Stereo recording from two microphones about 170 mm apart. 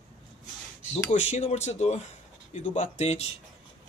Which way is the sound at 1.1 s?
45° left (ahead or behind).